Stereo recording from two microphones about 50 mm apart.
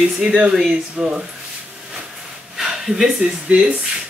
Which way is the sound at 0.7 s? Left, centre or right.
Centre.